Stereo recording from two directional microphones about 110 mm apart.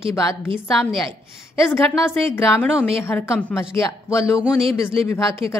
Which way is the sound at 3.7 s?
25° left (ahead or behind).